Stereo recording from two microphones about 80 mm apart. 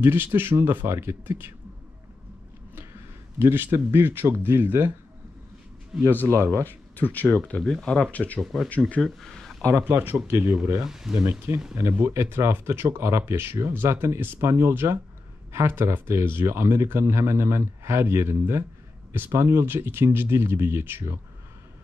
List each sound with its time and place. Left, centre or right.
0.0 s speech: right
3.3 s speech: right
6.2 s speech: right
6.6 s speech: left
8.4 s speech: centre
8.6 s speech: centre
9.0 s a sound: centre
9.8 s speech: right
10.8 s speech: centre
11.2 s speech: right